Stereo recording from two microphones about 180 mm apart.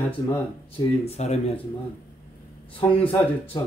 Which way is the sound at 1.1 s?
35° left (ahead or behind).